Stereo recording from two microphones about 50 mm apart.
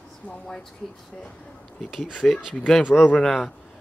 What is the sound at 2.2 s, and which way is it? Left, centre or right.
A man's voice, centre.